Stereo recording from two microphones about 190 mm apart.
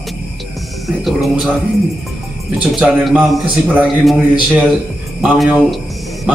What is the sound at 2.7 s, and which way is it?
A man's voice, centre (ahead or behind).